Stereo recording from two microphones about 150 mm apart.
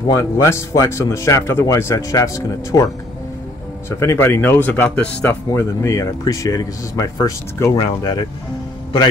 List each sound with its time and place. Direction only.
0.2 s speech: 20° left (ahead or behind)
4.0 s speech: 15° left (ahead or behind)
7.7 s speech: 30° left (ahead or behind)